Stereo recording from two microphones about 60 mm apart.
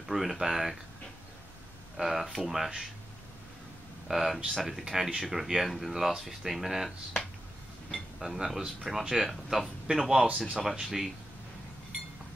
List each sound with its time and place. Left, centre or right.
0.1 s speech: centre
2.0 s speech: centre
4.1 s speech: centre